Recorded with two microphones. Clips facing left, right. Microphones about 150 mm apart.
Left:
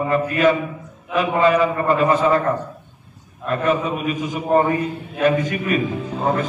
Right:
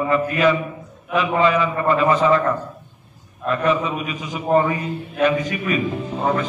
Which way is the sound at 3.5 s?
45° left (ahead or behind).